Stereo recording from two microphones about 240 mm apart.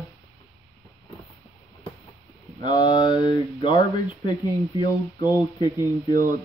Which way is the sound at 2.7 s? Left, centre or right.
Centre.